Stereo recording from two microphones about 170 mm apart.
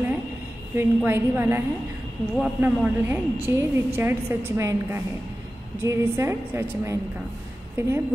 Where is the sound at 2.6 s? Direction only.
10° right (ahead or behind).